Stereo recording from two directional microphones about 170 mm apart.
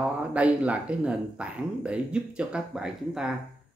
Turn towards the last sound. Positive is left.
turn(degrees=-5)  # may be behind; listen again after turning